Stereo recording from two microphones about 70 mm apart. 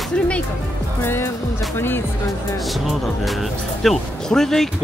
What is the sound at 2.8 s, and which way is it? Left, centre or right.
Speech, centre.